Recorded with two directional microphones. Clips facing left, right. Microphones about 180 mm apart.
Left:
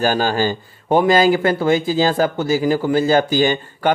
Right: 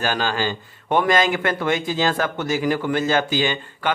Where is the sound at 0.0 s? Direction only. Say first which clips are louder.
Left 5 dB; 40° left (ahead or behind).